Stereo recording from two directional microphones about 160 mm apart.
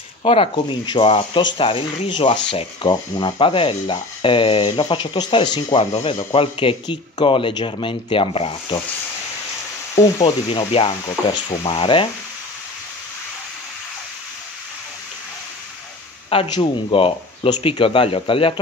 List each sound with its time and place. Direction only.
0.2 s speech: 35° left (ahead or behind)
9.9 s speech: 25° left (ahead or behind)
11.1 s speech: 20° left (ahead or behind)
16.3 s speech: 35° left (ahead or behind)